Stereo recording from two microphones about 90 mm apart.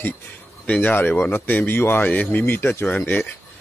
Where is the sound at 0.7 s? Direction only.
20° left (ahead or behind).